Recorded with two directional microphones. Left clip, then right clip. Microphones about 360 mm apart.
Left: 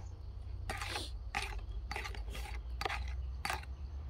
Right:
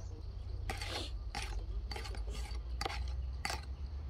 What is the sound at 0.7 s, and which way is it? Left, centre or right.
Mechanisms, centre.